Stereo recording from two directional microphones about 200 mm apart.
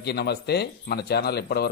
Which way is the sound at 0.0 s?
55° left (ahead or behind).